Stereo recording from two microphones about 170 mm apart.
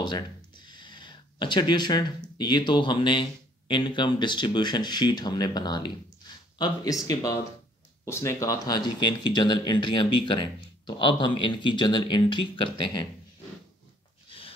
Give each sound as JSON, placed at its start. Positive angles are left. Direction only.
{"t": 0.0, "sound": "speech", "side_deg": 25}